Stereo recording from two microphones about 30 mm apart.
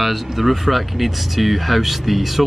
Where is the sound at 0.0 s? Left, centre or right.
Centre.